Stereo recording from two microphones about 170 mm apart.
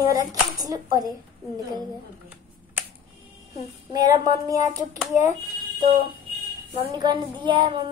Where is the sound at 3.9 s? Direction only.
20° right (ahead or behind).